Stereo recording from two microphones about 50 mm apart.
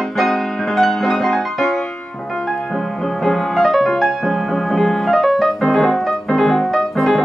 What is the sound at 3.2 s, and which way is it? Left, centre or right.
Music, centre.